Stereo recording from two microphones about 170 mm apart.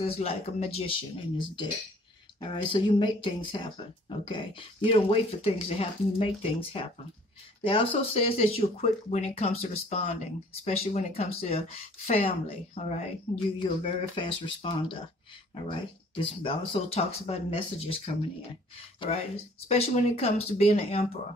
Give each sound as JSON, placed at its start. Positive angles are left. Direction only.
{"t": 0.0, "sound": "a woman's voice", "side_deg": 35}